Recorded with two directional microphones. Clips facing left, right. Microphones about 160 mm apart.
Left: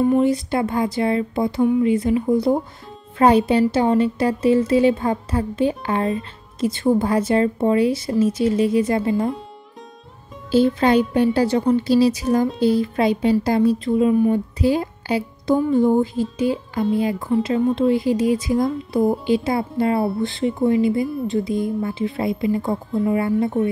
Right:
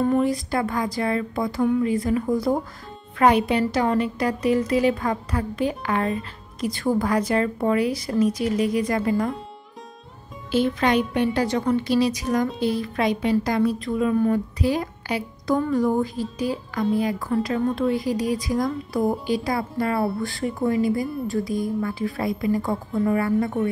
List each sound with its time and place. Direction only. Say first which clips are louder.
0.2 s speech: left 4 dB; 25° left (ahead or behind)
1.6 s speech: left 3 dB; 10° left (ahead or behind)
1.9 s speech: left 4 dB; 25° left (ahead or behind)
10.5 s a woman's voice: left 5 dB; 30° left (ahead or behind)
14.3 s music: left 4 dB; 30° left (ahead or behind)
15.7 s speech: left 5 dB; 25° left (ahead or behind)